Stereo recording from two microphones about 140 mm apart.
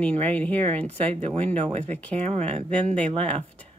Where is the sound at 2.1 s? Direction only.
55° right (ahead or behind).